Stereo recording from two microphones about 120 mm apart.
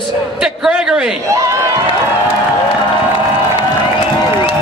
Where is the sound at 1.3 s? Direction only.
25° right (ahead or behind).